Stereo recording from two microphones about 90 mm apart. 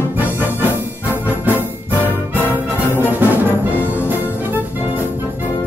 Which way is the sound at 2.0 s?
20° left (ahead or behind).